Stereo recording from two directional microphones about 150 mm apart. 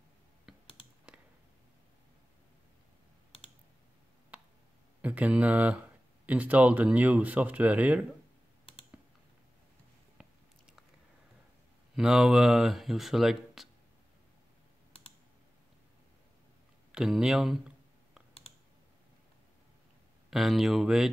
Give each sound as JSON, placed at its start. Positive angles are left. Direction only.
{"t": 0.5, "sound": "computer keyboard", "side_deg": -5}
{"t": 4.3, "sound": "a sound", "side_deg": -10}
{"t": 5.0, "sound": "speech", "side_deg": -10}
{"t": 10.2, "sound": "biting", "side_deg": -5}
{"t": 11.9, "sound": "speech", "side_deg": -5}
{"t": 16.9, "sound": "a sound", "side_deg": -5}
{"t": 20.2, "sound": "speech", "side_deg": 0}